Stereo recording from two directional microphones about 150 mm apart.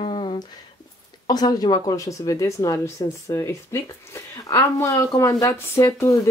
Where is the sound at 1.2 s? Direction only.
25° left (ahead or behind).